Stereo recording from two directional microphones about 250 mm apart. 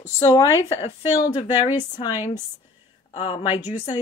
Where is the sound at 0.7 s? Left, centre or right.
Left.